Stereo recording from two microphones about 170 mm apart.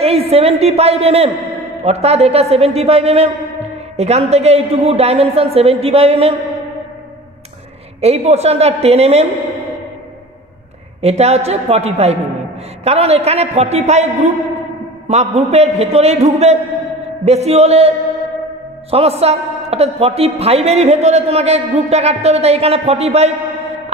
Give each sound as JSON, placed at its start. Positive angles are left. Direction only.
{"t": 0.0, "sound": "a man's voice", "side_deg": -35}
{"t": 8.0, "sound": "a man's voice", "side_deg": -40}
{"t": 11.0, "sound": "a man's voice", "side_deg": -40}